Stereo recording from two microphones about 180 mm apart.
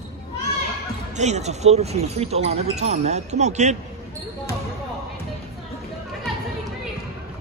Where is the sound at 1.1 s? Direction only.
40° right (ahead or behind).